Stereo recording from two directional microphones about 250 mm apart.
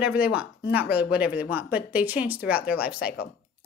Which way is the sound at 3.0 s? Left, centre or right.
Left.